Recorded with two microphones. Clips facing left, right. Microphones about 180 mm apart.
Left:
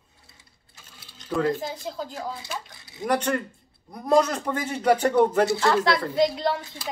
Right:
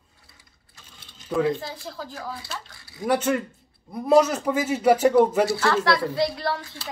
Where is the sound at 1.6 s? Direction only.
20° left (ahead or behind).